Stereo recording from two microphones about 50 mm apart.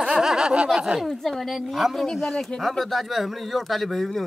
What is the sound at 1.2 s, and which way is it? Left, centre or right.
Speech, centre.